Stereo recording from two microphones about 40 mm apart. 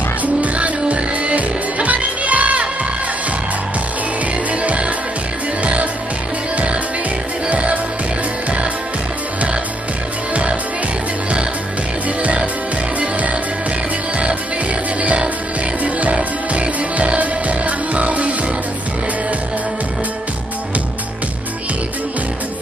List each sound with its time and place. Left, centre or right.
0.2 s music: right
4.5 s music: right
7.4 s music: right
13.0 s music: right
15.0 s music: right